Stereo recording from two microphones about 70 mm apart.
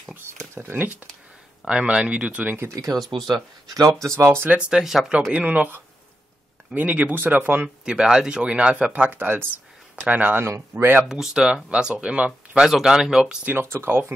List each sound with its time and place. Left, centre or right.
0.6 s speech: right
1.7 s speech: centre
2.7 s speech: right
4.5 s speech: centre
5.3 s speech: right
7.6 s speech: centre
10.4 s speech: right
11.1 s speech: centre
12.6 s speech: centre
13.5 s speech: right